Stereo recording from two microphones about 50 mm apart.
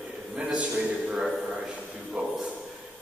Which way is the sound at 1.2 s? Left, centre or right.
Centre.